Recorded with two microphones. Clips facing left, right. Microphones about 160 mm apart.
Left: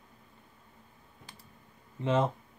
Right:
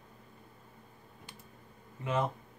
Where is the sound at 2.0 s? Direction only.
25° left (ahead or behind).